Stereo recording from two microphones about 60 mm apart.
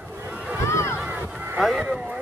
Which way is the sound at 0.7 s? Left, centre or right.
Left.